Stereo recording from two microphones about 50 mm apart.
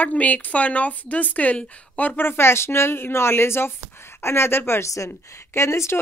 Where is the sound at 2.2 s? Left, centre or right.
Left.